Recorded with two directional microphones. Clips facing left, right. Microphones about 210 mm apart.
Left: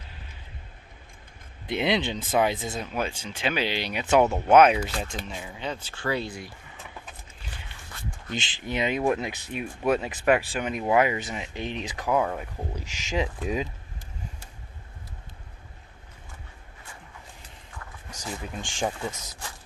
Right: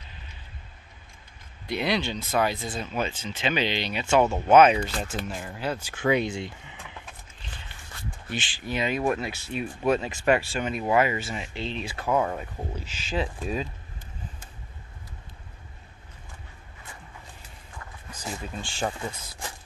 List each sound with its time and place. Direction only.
1.7 s speech: 20° left (ahead or behind)
4.6 s speech: 5° left (ahead or behind); by 6.5 s 25° right (ahead or behind)
8.4 s speech: 20° left (ahead or behind)
18.4 s speech: 15° left (ahead or behind)